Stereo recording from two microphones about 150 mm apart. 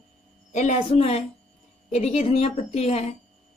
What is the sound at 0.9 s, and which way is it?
Speech, 40° left (ahead or behind).